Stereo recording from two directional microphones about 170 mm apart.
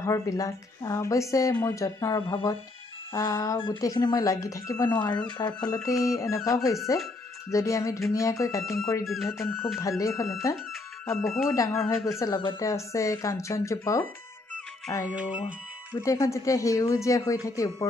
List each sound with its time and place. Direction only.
0.0 s speech: 20° left (ahead or behind)
3.1 s speech: 15° left (ahead or behind)
15.1 s speech: 5° right (ahead or behind)
16.0 s speech: 20° left (ahead or behind)